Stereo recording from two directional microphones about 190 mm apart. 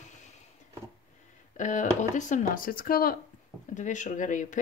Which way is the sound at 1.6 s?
40° left (ahead or behind).